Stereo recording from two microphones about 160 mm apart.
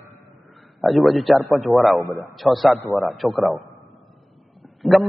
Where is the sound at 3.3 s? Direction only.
20° right (ahead or behind).